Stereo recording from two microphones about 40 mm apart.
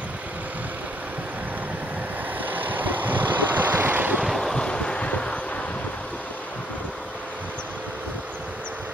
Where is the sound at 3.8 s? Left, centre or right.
Right.